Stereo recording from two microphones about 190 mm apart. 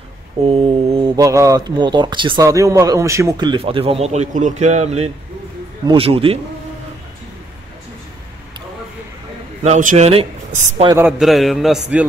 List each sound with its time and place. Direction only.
0.5 s a man's voice: 25° right (ahead or behind)
9.6 s speech: 40° right (ahead or behind)
11.1 s a man's voice: centre (ahead or behind)